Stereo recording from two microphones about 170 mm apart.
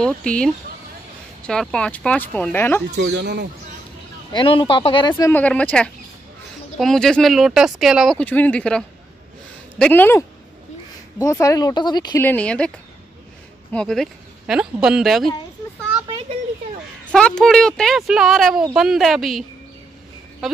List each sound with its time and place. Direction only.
0.0 s speech: 5° left (ahead or behind)
3.0 s speech: 85° right
4.3 s speech: 30° left (ahead or behind)
5.1 s speech: 10° left (ahead or behind)
12.2 s speech: 10° left (ahead or behind)
13.7 s speech: 5° left (ahead or behind)
17.0 s speech: 5° left (ahead or behind)
20.4 s speech: centre (ahead or behind)